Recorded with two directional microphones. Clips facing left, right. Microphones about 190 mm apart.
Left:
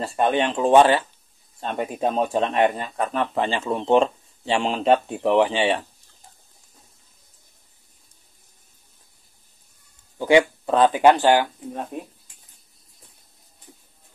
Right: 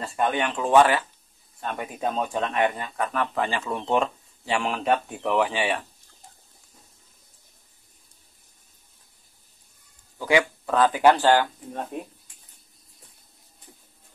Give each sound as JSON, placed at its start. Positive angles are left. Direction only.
{"t": 0.0, "sound": "speech", "side_deg": 30}
{"t": 10.1, "sound": "speech", "side_deg": 25}
{"t": 11.9, "sound": "speech", "side_deg": 0}